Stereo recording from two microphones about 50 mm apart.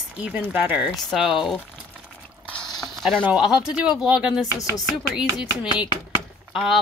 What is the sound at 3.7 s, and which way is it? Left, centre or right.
Speech, right.